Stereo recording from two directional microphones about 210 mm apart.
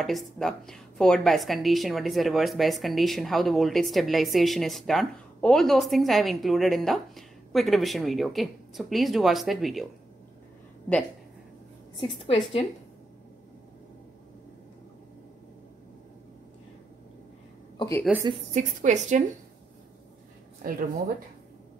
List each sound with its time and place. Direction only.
0.0 s a woman's voice: centre (ahead or behind)
12.0 s a woman's voice: 25° left (ahead or behind)
17.7 s a woman's voice: 15° left (ahead or behind)
18.5 s a woman's voice: 35° right (ahead or behind)